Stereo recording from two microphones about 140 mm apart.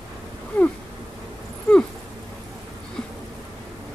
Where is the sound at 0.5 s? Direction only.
10° left (ahead or behind).